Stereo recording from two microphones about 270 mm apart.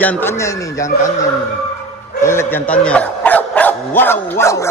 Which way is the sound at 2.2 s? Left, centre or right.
Centre.